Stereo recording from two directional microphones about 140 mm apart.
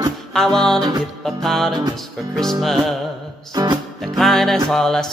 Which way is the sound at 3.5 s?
30° right (ahead or behind).